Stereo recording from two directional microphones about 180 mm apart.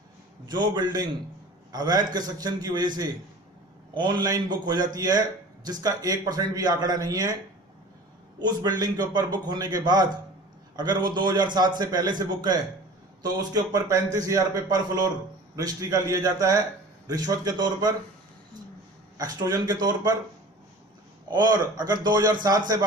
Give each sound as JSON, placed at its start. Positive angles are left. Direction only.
{"t": 0.5, "sound": "a man's voice", "side_deg": -25}
{"t": 8.4, "sound": "a man's voice", "side_deg": -25}
{"t": 10.8, "sound": "a man's voice", "side_deg": -25}
{"t": 19.1, "sound": "a man's voice", "side_deg": -20}
{"t": 21.3, "sound": "a man's voice", "side_deg": -25}